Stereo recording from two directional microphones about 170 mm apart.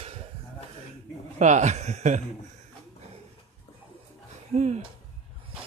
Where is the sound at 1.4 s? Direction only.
45° right (ahead or behind).